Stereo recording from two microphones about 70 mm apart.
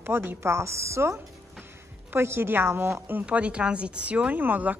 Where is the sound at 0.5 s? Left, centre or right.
Right.